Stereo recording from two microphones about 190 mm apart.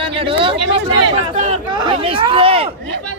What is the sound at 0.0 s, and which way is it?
Speech, 30° right (ahead or behind).